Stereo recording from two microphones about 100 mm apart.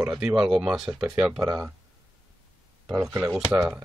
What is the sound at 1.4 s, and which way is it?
Speech, 45° right (ahead or behind).